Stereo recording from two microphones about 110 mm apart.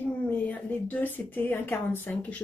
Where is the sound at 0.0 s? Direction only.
15° left (ahead or behind).